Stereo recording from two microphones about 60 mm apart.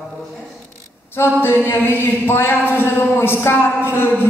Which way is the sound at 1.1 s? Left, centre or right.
Left.